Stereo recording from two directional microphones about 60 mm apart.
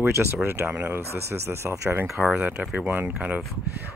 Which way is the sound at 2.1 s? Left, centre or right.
Right.